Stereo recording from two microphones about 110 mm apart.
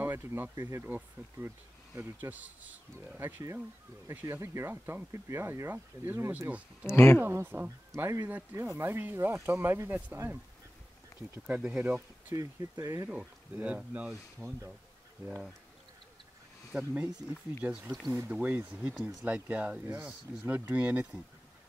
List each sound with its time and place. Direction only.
0.0 s speech: 20° right (ahead or behind)
6.5 s speech: 10° right (ahead or behind)
7.2 s speech: 20° right (ahead or behind)
12.4 s speech: 25° right (ahead or behind)
13.1 s speech: 15° right (ahead or behind)
16.7 s speech: 10° right (ahead or behind)